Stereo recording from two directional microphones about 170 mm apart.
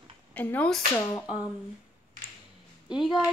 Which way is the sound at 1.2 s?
5° right (ahead or behind).